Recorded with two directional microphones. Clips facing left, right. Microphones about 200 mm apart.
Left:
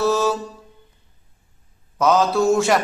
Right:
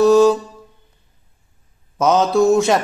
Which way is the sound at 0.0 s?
15° right (ahead or behind).